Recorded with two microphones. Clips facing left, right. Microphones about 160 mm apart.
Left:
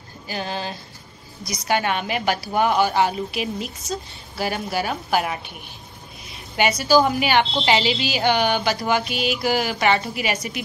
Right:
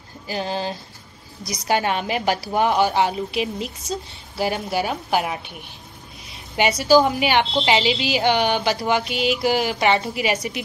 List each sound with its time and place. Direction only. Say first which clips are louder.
0.3 s a woman's voice: right 3 dB; 30° right (ahead or behind)
6.5 s a woman's voice: right 2 dB; 25° right (ahead or behind)